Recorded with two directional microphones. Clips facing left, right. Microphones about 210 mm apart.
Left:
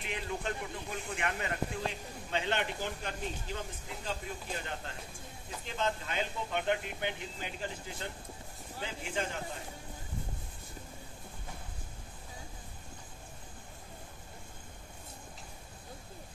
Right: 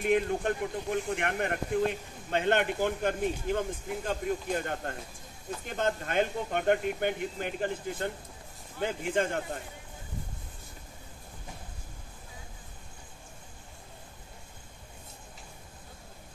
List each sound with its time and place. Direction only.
0.0 s speech: 50° right (ahead or behind)